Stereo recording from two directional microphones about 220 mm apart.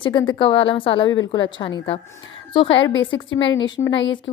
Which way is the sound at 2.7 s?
60° left (ahead or behind).